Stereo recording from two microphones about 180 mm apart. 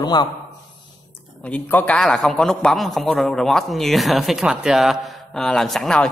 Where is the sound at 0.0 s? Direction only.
25° left (ahead or behind).